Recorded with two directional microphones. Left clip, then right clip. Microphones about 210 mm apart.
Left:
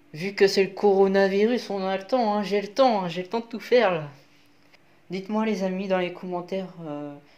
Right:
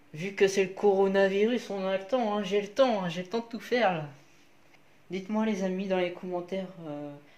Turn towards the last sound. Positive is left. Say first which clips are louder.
# left 4 dB
turn(degrees=25)  # may be behind; listen again after turning